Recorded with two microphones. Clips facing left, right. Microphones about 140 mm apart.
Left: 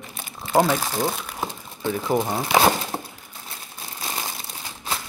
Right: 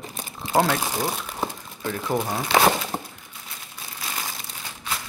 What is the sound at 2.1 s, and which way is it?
Speech, 20° left (ahead or behind).